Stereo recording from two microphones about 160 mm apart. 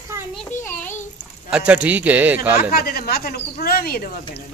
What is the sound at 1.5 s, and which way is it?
Speech, 10° right (ahead or behind).